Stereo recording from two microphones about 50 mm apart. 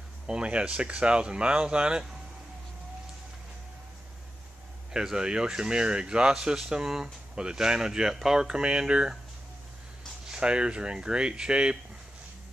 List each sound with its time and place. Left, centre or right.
0.3 s speech: right
4.9 s speech: centre
10.2 s speech: centre